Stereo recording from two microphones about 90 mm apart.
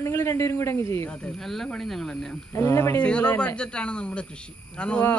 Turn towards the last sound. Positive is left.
turn(degrees=10)  # may be behind; listen again after turning